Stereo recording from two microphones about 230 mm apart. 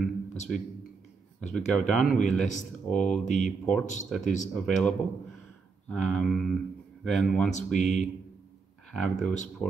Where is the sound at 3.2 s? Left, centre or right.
Left.